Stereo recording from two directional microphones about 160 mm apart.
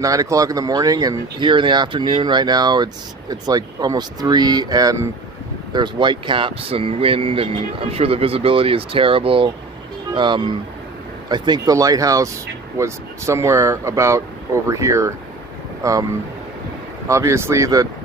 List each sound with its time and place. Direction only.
0.0 s speech: 20° right (ahead or behind)
17.1 s speech: 15° right (ahead or behind)